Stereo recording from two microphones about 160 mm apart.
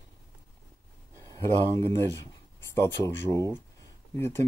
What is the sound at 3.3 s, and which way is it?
Speech, 20° left (ahead or behind).